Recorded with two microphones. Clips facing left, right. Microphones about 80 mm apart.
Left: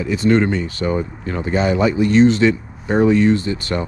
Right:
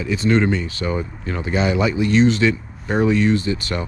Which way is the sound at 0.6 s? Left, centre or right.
Left.